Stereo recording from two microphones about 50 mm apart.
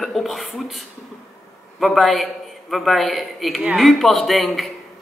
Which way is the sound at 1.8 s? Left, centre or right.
Centre.